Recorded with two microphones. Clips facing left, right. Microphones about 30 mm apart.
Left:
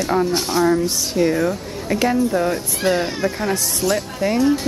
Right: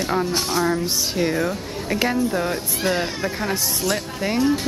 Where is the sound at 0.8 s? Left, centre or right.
Centre.